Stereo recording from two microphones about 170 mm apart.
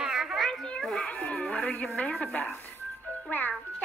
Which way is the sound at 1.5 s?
5° left (ahead or behind).